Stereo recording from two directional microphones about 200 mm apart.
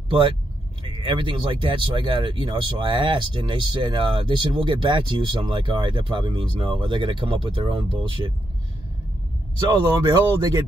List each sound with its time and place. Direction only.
1.0 s speech: 25° right (ahead or behind)
9.6 s speech: 20° right (ahead or behind)